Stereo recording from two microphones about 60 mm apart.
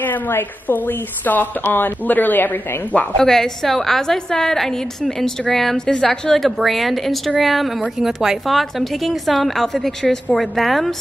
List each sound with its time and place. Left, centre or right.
0.0 s a woman's voice: left
3.2 s a woman's voice: centre